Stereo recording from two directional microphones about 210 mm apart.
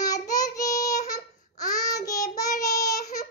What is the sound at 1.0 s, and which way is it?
Child singing, 15° left (ahead or behind).